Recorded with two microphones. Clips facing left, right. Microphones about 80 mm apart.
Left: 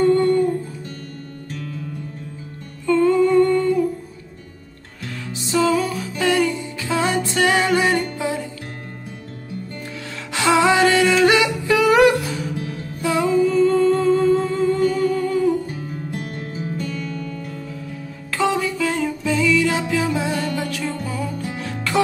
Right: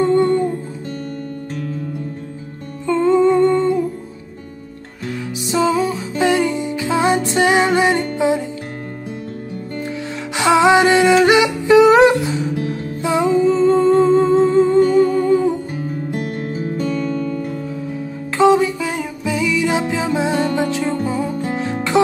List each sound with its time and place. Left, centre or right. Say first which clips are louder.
0.0 s music: right 1 dB; right
2.9 s humming: right 2 dB; right
5.0 s music: right 6 dB; centre
9.8 s music: right 7 dB; right
16.2 s music: right 6 dB; right
18.4 s music: right 7 dB; right